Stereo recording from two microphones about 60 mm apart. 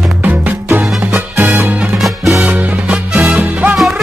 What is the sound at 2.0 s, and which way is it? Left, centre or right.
Music, centre.